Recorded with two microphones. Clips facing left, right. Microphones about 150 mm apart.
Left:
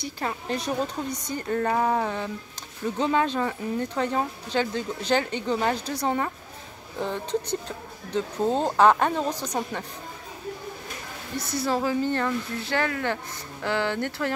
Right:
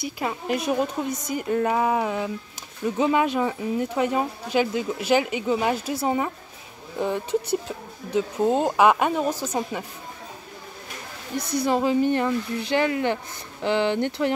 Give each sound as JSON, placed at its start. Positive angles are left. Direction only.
{"t": 0.0, "sound": "speech", "side_deg": -10}
{"t": 11.3, "sound": "speech", "side_deg": -15}